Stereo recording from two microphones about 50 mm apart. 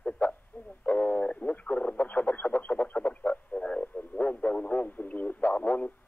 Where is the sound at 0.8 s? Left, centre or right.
Left.